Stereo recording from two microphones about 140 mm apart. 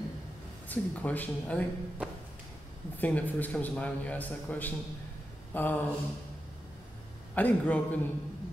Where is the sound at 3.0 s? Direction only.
10° left (ahead or behind).